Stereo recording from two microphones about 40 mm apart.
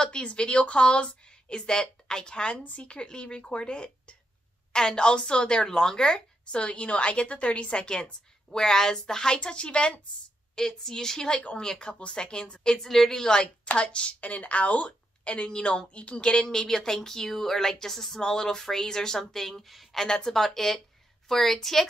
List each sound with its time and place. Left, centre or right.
0.0 s a woman's voice: left
10.5 s a woman's voice: centre
12.8 s speech: centre
13.7 s a woman's voice: left
16.4 s speech: centre
20.1 s speech: centre